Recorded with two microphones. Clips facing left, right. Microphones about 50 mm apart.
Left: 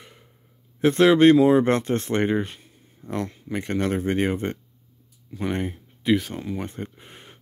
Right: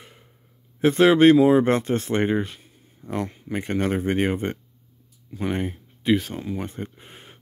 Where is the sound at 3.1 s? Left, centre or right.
Right.